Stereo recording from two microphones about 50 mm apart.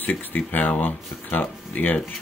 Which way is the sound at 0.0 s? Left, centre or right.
Left.